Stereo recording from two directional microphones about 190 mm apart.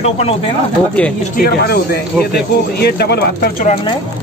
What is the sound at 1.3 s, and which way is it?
Speech, 55° left (ahead or behind).